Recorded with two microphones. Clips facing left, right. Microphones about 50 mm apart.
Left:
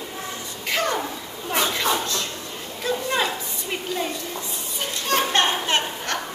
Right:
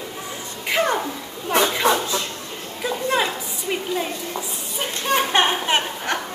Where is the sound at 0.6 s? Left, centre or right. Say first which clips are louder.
Right 3 dB; centre.